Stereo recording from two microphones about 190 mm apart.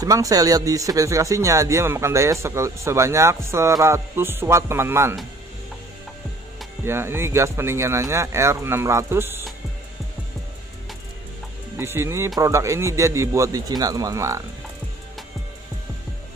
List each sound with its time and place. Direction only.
0.0 s speech: 20° right (ahead or behind)
6.8 s speech: 10° right (ahead or behind)
11.7 s speech: 15° right (ahead or behind)